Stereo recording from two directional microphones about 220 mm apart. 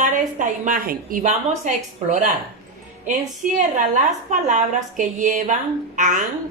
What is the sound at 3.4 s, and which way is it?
A woman's voice, 35° right (ahead or behind).